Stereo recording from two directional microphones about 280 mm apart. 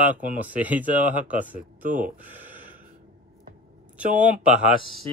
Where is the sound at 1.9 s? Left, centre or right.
Right.